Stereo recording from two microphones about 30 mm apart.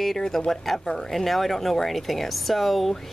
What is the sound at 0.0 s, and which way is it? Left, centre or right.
Speech, centre.